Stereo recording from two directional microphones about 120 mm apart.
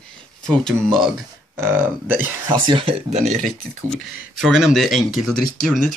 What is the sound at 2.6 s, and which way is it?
Speech, 45° right (ahead or behind).